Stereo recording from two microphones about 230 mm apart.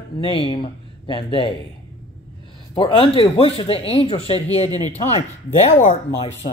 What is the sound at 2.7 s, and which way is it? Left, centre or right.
Speech, left.